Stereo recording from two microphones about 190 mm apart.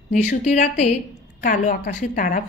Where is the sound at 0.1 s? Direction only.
40° left (ahead or behind).